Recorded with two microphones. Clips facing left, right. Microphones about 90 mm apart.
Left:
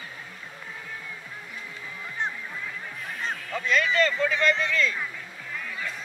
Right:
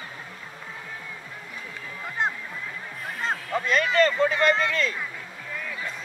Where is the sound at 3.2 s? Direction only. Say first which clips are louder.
Right 4 dB; 40° right (ahead or behind).